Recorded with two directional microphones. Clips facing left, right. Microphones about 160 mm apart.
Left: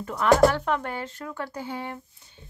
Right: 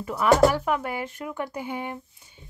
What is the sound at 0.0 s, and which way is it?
Speech, 5° right (ahead or behind).